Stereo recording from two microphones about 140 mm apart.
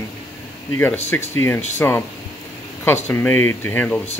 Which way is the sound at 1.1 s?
15° left (ahead or behind).